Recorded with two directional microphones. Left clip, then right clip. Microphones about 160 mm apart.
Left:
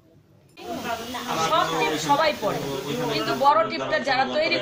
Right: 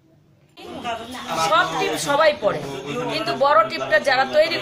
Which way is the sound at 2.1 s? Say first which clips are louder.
Right 6 dB; 20° right (ahead or behind).